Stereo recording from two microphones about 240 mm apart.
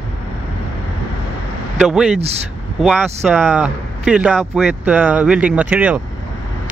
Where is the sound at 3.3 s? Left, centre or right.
Centre.